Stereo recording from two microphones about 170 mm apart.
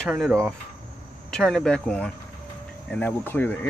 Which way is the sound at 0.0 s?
Centre (ahead or behind).